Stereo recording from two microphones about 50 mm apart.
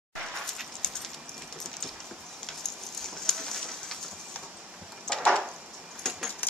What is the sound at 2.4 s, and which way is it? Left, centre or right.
Bird, centre.